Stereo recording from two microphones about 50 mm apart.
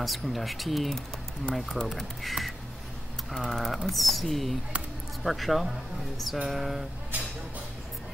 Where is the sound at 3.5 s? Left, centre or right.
Centre.